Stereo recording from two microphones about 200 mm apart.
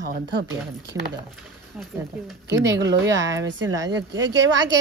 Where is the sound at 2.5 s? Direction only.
15° right (ahead or behind).